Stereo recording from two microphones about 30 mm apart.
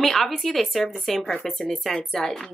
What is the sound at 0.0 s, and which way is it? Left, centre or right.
A woman's voice, centre.